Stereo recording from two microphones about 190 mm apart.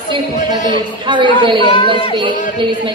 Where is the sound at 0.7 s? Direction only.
25° right (ahead or behind).